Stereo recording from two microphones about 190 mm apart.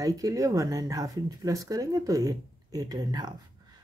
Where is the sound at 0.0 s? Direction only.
20° right (ahead or behind).